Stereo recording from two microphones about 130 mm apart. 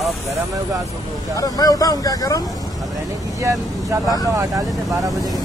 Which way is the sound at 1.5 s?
30° left (ahead or behind).